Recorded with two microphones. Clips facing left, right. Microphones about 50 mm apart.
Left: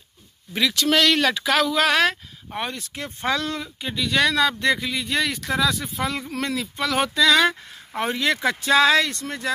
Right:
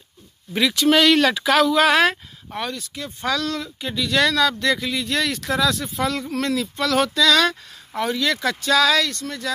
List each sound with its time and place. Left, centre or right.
0.5 s speech: centre
2.7 s speech: left
3.8 s speech: centre
4.4 s speech: centre
4.8 s speech: centre
7.7 s speech: left